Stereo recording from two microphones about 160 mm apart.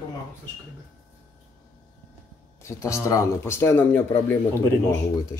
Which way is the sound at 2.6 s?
20° left (ahead or behind).